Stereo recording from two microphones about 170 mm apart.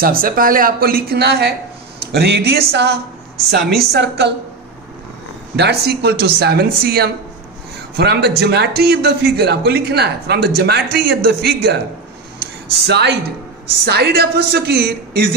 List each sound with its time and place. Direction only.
0.0 s a woman's voice: 55° right (ahead or behind); by 3.0 s 80° right
3.4 s speech: 70° right (ahead or behind)
5.6 s speech: 70° right (ahead or behind)
8.0 s speech: 75° right (ahead or behind)
12.4 s a sound: 80° right
13.8 s speech: 70° right (ahead or behind)